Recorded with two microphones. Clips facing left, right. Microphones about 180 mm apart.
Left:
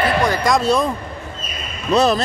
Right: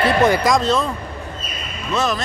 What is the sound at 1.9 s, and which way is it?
Speech, 35° left (ahead or behind).